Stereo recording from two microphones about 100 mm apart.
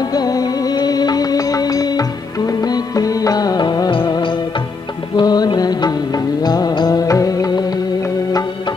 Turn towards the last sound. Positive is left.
turn(degrees=40)  # may be behind; listen again after turning